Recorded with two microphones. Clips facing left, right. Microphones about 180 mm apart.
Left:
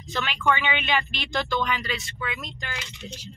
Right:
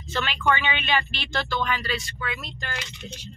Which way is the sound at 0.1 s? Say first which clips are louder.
Even; 15° left (ahead or behind).